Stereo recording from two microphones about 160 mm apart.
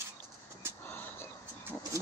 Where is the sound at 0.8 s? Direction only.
15° left (ahead or behind).